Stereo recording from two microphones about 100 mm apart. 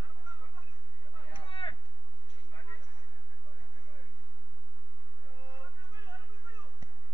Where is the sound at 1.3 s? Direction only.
55° left (ahead or behind).